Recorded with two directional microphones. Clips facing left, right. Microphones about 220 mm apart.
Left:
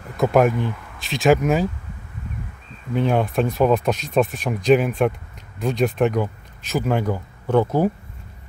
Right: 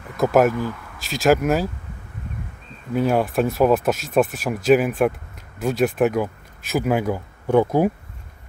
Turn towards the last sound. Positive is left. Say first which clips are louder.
# right 1 dB
turn(degrees=-10)  # may be behind; listen again after turning